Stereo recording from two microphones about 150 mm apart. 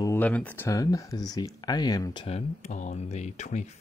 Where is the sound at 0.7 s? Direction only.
25° left (ahead or behind).